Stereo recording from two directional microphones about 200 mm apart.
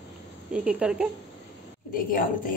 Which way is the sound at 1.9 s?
45° left (ahead or behind).